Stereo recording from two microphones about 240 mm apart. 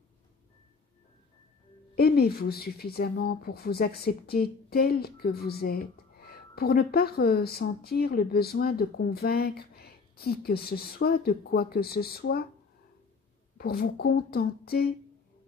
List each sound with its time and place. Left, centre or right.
2.0 s speech: left
13.6 s speech: left